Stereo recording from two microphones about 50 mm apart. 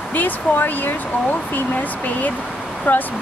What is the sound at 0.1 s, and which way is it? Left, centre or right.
Speech, left.